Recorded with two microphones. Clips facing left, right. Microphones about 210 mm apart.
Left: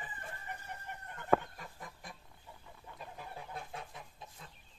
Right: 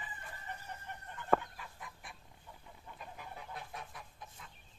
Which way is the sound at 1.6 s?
40° left (ahead or behind).